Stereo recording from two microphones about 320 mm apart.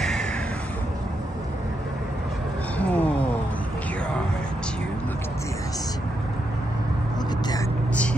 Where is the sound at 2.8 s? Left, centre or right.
Centre.